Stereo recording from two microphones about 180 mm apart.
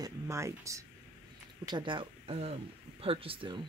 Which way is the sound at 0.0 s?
15° right (ahead or behind).